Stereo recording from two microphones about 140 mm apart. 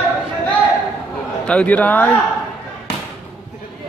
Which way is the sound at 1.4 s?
10° left (ahead or behind).